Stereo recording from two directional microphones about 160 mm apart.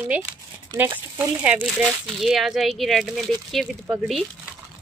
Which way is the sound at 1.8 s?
Centre (ahead or behind).